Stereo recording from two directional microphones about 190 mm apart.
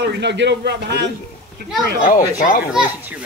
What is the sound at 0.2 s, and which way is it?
Speech, 65° right (ahead or behind).